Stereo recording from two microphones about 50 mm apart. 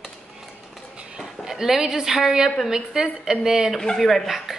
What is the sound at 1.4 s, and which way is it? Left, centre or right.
A woman's voice, centre.